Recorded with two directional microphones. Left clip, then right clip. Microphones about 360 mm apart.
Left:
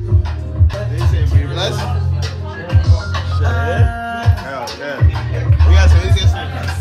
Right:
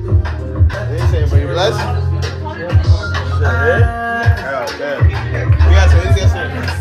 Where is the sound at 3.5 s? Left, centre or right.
Centre.